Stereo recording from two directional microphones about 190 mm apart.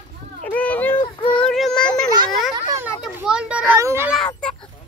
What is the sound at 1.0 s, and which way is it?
Speech, 30° left (ahead or behind).